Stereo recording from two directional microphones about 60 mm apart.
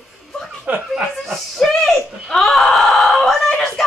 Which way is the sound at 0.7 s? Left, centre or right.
Right.